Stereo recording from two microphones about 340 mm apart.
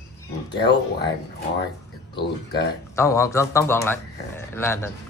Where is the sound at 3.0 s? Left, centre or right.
Centre.